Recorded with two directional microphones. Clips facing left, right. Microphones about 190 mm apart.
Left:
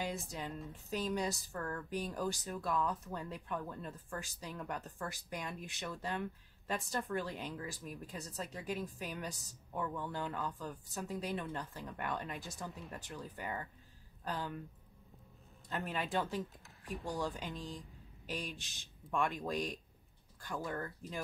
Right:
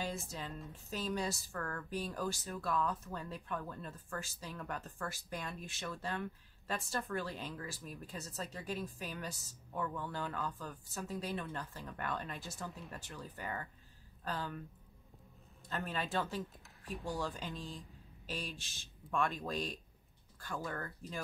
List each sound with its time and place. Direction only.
0.0 s a woman's voice: 15° left (ahead or behind)
15.7 s speech: 15° left (ahead or behind)